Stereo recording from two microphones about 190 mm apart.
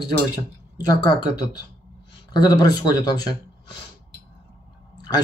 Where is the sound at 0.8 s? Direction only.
20° left (ahead or behind).